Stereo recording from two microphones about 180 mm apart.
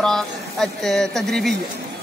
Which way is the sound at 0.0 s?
Centre (ahead or behind).